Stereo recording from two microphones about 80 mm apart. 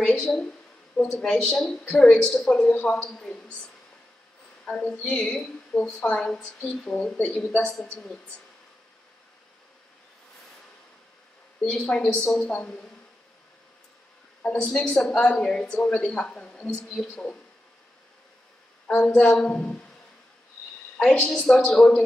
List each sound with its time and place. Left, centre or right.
0.0 s a sound: centre
0.3 s a woman's voice: centre
4.6 s a woman's voice: centre
11.6 s a woman's voice: centre
14.4 s a woman's voice: centre
18.9 s a woman's voice: centre
21.0 s a woman's voice: centre